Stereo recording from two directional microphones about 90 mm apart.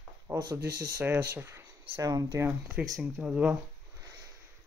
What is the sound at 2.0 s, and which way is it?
Speech, 40° right (ahead or behind).